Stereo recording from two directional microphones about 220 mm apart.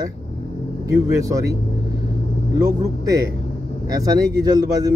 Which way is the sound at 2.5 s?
15° right (ahead or behind).